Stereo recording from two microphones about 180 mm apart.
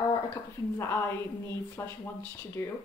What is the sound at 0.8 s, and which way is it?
Speech, 15° left (ahead or behind).